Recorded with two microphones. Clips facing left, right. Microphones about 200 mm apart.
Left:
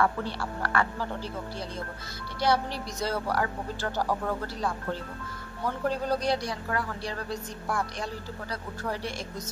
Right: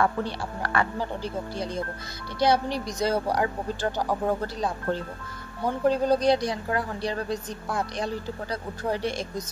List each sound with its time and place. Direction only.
0.0 s a woman's voice: 20° right (ahead or behind)
5.9 s a woman's voice: 20° right (ahead or behind)